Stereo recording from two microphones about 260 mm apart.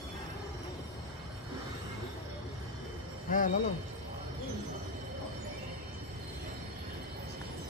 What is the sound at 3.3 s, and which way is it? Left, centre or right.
Speech, left.